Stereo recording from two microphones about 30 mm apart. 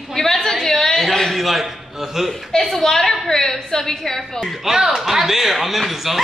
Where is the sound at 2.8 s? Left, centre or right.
Centre.